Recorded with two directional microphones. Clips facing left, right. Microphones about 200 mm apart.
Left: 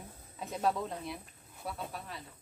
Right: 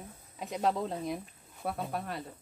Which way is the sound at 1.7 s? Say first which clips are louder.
Right 6 dB; 60° right (ahead or behind).